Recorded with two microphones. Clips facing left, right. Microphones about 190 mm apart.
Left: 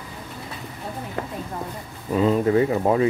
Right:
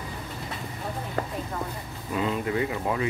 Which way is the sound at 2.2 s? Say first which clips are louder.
Left 8 dB; 35° left (ahead or behind).